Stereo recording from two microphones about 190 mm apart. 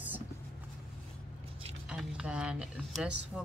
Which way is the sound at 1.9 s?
5° right (ahead or behind).